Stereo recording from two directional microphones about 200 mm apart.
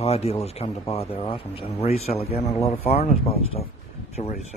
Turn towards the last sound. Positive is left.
turn(degrees=30)  # may be behind; listen again after turning